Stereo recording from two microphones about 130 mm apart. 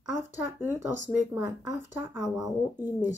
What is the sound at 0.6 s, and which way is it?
Speech, 15° right (ahead or behind).